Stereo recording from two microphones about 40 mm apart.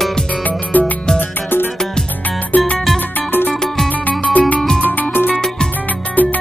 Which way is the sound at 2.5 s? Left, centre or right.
Left.